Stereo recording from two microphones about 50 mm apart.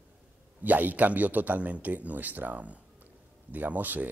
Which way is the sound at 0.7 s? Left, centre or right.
Right.